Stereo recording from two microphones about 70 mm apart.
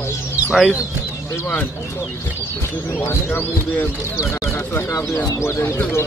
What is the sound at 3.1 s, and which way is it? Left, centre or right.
Speech, left.